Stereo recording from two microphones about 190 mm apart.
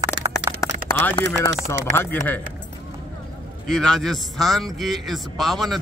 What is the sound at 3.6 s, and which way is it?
A man's voice, centre (ahead or behind).